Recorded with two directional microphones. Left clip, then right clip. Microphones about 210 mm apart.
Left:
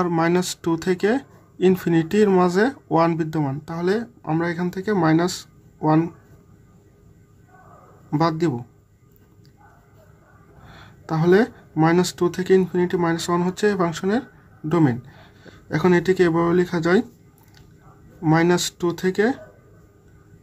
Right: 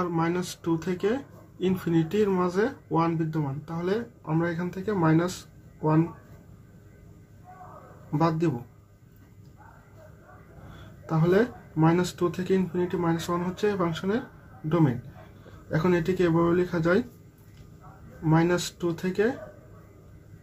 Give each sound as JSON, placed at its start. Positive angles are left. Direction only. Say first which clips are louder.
{"t": 0.0, "sound": "speech", "louder": "left 7 dB", "side_deg": 50}
{"t": 8.2, "sound": "speech", "louder": "left 4 dB", "side_deg": 45}
{"t": 11.1, "sound": "speech", "louder": "left 6 dB", "side_deg": 50}
{"t": 18.2, "sound": "speech", "louder": "left 6 dB", "side_deg": 50}